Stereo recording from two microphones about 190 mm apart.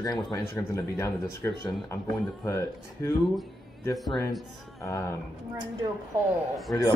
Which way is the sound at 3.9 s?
Centre (ahead or behind).